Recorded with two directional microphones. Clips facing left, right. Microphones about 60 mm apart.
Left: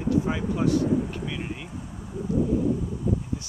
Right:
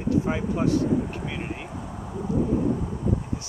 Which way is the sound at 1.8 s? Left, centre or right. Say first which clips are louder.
Right 4 dB; right.